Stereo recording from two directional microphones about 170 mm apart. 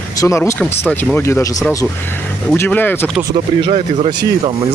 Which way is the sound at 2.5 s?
15° left (ahead or behind).